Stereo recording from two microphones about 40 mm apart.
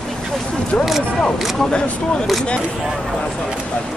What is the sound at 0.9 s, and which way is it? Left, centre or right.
Speech, centre.